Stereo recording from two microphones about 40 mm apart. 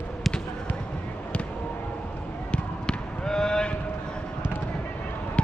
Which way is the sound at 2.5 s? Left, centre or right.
Left.